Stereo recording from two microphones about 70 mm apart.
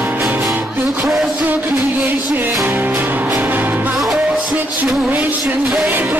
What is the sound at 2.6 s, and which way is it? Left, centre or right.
Music, right.